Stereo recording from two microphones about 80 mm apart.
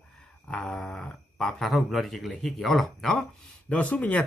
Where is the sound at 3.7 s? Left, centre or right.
Centre.